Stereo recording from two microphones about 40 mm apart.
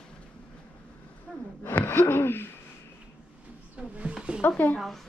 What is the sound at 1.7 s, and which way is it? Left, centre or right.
Gasp, left.